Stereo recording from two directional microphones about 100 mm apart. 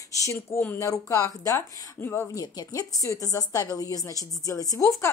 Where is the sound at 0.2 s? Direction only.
30° left (ahead or behind).